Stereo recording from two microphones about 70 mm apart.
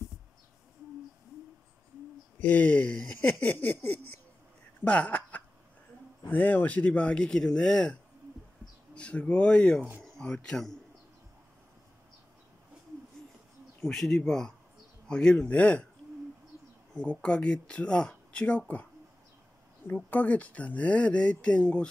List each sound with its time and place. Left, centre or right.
2.3 s speech: left
13.7 s speech: centre
16.9 s speech: centre
20.1 s speech: left